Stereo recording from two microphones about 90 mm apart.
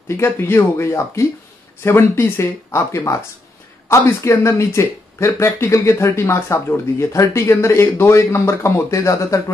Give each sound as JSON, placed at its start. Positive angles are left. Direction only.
{"t": 0.2, "sound": "speech", "side_deg": 30}